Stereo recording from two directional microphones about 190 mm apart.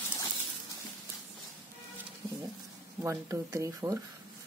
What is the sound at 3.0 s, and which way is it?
Speech, 15° right (ahead or behind).